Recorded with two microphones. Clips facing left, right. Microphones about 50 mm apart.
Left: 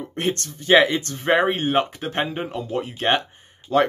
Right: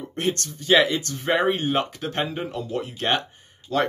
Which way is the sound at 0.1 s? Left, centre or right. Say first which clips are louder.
Even; left.